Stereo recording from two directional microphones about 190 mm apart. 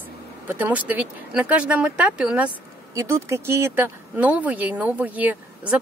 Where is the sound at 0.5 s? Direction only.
10° right (ahead or behind).